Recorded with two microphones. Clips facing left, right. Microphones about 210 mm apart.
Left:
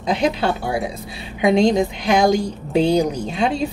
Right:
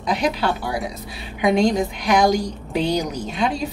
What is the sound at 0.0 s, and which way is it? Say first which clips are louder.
Speech: left 2 dB; 25° left (ahead or behind).